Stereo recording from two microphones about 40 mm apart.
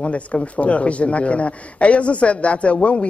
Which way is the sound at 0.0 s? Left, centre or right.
Left.